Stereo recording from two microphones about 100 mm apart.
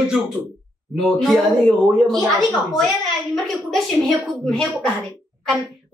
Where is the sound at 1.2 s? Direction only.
Centre (ahead or behind).